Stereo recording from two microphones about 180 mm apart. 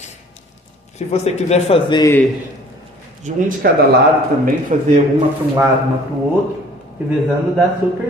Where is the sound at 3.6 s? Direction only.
60° right (ahead or behind).